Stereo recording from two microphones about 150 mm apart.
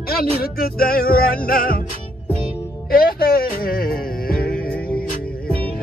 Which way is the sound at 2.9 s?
80° left.